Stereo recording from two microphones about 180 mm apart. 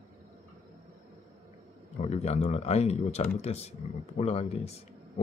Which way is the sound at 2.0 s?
35° left (ahead or behind).